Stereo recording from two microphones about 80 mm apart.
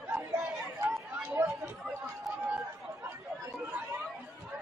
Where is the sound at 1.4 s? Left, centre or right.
Right.